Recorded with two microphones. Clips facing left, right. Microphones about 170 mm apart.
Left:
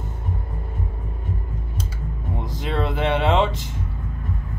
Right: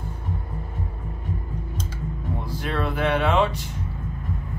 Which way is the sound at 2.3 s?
25° left (ahead or behind).